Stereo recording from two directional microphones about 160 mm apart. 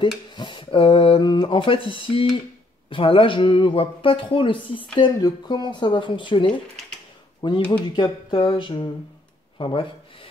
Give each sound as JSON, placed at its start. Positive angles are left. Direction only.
{"t": 0.3, "sound": "speech", "side_deg": 30}
{"t": 7.4, "sound": "speech", "side_deg": 25}